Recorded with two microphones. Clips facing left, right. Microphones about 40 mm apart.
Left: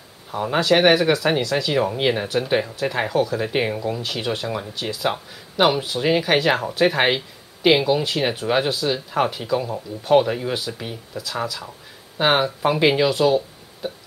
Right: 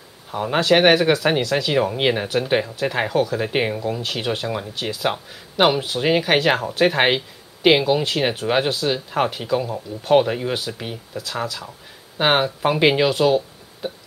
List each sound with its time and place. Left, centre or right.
0.3 s speech: centre
13.8 s music: right